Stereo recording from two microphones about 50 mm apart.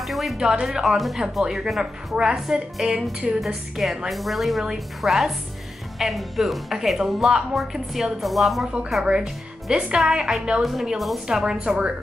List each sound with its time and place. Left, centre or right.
0.0 s music: centre
0.4 s a woman's voice: centre
3.3 s a woman's voice: centre
4.1 s speech: centre
9.0 s a woman's voice: centre